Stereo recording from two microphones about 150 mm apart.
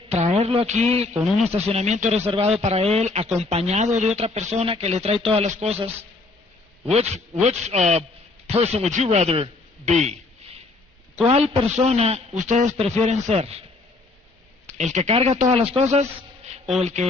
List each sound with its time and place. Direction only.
0.1 s a woman's voice: 45° right (ahead or behind)
11.2 s speech: 40° right (ahead or behind)
14.7 s speech: 50° right (ahead or behind)